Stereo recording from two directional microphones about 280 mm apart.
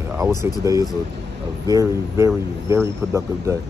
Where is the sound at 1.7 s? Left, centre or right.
Centre.